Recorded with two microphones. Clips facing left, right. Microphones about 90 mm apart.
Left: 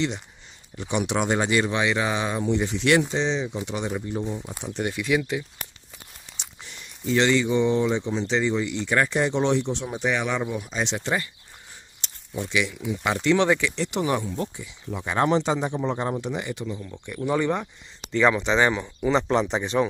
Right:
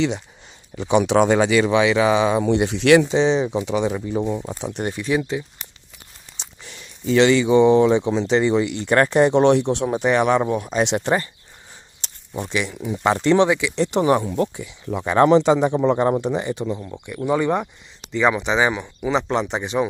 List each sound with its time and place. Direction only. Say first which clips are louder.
0.8 s speech: right 8 dB; 90° right
4.9 s speech: right 2 dB; 30° right (ahead or behind)
7.2 s speech: right 7 dB; 80° right
8.3 s speech: right 6 dB; 60° right (ahead or behind)
8.8 s speech: right 7 dB; 50° right (ahead or behind); by 10.0 s 70° right (ahead or behind)
10.0 s speech: right 7 dB; 55° right (ahead or behind)
11.0 s speech: right 6 dB; 45° right (ahead or behind)
13.5 s speech: right 2 dB; 15° right (ahead or behind)
13.7 s speech: right 7 dB; 40° right (ahead or behind)
14.3 s speech: right 8 dB; 65° right (ahead or behind)
16.2 s speech: right 7 dB; 35° right (ahead or behind)
16.9 s speech: right 2 dB; 10° right (ahead or behind)